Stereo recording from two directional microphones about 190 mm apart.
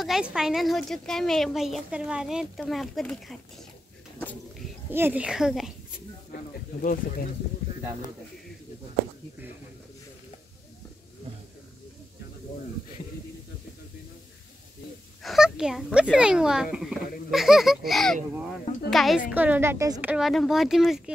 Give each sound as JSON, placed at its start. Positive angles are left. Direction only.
{"t": 0.0, "sound": "speech", "side_deg": -5}
{"t": 4.9, "sound": "speech", "side_deg": -10}
{"t": 6.3, "sound": "snake", "side_deg": 45}
{"t": 15.2, "sound": "speech", "side_deg": 0}